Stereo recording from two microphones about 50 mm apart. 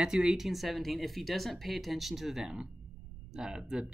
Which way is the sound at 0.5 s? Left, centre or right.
Centre.